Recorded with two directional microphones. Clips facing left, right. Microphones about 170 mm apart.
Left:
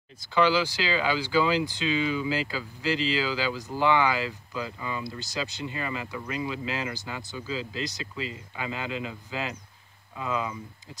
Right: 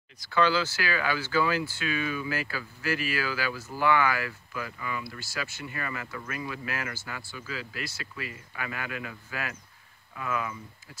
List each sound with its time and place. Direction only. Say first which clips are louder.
0.2 s speech: left 2 dB; 15° left (ahead or behind)